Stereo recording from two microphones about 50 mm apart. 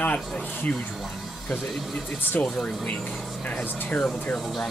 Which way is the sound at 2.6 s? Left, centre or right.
Left.